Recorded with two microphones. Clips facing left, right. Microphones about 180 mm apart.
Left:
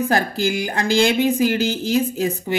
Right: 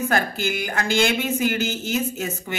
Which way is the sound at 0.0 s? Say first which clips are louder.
Left 4 dB; 35° left (ahead or behind).